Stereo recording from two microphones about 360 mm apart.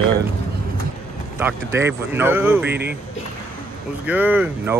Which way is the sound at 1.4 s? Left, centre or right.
Centre.